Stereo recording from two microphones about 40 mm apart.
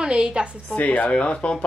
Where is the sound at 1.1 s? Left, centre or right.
Left.